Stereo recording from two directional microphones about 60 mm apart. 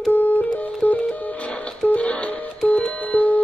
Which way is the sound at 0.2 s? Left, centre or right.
Left.